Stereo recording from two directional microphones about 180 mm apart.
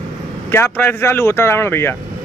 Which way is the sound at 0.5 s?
10° left (ahead or behind).